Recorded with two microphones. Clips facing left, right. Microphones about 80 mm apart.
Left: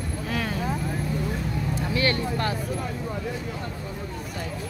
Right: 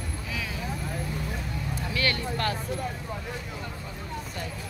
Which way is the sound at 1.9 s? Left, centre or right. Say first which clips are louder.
Left 3 dB; left.